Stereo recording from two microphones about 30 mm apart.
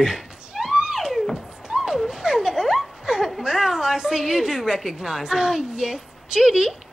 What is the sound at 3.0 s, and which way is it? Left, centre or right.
Laughter, centre.